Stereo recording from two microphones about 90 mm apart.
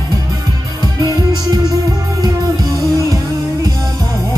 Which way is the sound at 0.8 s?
50° right (ahead or behind).